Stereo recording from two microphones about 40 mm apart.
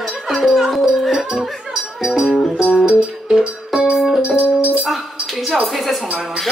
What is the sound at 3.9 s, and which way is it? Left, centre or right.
Music, centre.